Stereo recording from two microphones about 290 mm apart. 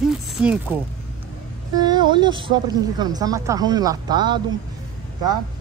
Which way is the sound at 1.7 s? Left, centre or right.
Centre.